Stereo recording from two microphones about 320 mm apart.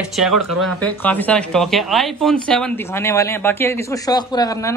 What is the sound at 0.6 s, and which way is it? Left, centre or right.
Speech, centre.